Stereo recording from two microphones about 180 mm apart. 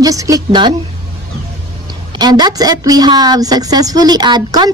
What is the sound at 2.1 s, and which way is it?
A woman's voice, 25° right (ahead or behind).